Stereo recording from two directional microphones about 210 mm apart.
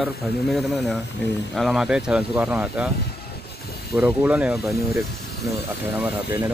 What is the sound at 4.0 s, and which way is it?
Speech, 5° right (ahead or behind).